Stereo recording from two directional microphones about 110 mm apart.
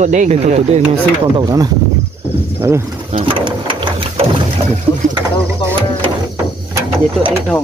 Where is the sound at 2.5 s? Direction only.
25° right (ahead or behind).